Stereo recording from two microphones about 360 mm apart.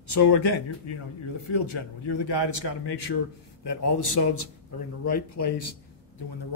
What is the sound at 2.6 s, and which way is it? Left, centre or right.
Speech, left.